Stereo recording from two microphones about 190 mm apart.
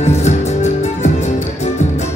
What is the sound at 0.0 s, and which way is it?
Music, 35° left (ahead or behind).